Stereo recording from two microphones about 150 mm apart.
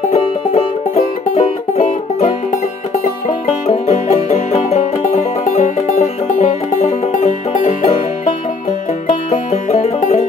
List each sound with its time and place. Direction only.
1.3 s music: 60° left (ahead or behind)
3.6 s music: 65° left (ahead or behind)
4.1 s music: 45° left (ahead or behind)
9.3 s music: 55° left (ahead or behind)